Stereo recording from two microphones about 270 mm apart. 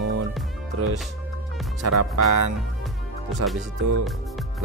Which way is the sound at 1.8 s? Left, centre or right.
Right.